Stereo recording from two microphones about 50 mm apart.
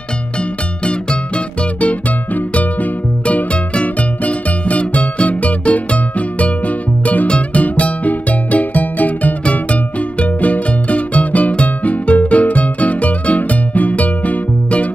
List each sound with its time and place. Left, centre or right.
0.4 s music: left